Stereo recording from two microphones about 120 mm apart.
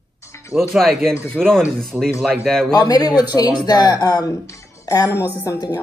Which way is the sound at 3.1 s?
35° left (ahead or behind).